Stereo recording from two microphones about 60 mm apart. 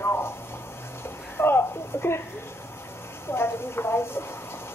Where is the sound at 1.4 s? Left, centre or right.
Left.